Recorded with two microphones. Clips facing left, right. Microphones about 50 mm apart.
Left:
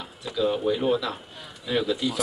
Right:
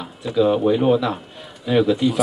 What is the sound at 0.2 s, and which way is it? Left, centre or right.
Speech, right.